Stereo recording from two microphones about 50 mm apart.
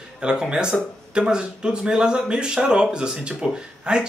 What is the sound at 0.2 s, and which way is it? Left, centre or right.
Speech, centre.